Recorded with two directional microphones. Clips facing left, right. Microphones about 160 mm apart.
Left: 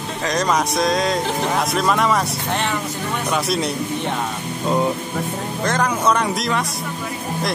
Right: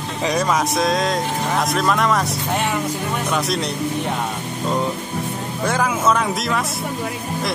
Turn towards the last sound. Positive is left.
turn(degrees=0)  # may be behind; listen again after turning